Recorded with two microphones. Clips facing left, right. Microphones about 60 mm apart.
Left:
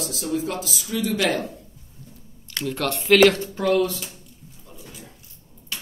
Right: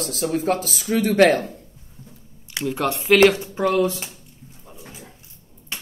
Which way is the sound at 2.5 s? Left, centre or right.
Centre.